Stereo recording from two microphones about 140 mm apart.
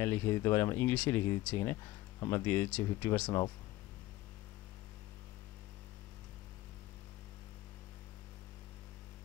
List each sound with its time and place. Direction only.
0.0 s speech: 15° left (ahead or behind)